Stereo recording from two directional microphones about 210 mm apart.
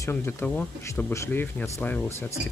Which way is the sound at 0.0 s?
10° left (ahead or behind).